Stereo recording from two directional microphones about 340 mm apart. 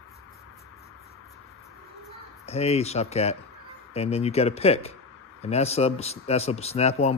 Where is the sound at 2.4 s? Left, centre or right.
Centre.